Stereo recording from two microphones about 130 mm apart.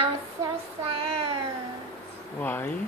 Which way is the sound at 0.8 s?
45° right (ahead or behind).